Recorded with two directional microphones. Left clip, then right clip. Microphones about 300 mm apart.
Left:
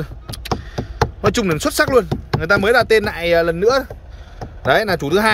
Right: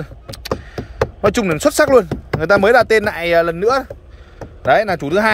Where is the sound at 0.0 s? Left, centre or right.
Centre.